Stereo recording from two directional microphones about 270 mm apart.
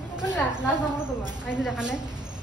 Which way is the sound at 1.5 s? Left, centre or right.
Centre.